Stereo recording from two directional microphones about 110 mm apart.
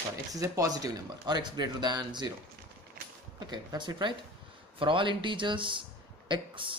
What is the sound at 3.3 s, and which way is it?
Speech, 40° right (ahead or behind).